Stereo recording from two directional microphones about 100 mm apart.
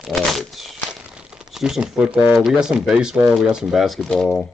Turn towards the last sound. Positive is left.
turn(degrees=5)  # may be behind; listen again after turning